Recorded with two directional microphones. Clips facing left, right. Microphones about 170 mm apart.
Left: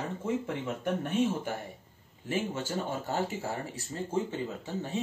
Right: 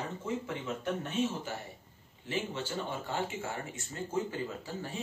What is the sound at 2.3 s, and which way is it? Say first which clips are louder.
Speech: left 3 dB; 45° left (ahead or behind).